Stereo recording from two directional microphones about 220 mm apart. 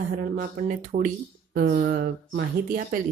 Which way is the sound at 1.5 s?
50° right (ahead or behind).